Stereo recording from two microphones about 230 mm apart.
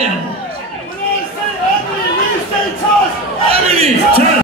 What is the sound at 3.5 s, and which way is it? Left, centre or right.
Battle cry, right.